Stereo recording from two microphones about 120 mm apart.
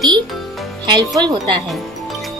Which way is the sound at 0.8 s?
40° right (ahead or behind).